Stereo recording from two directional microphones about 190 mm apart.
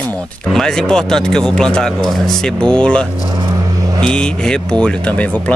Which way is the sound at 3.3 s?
20° right (ahead or behind).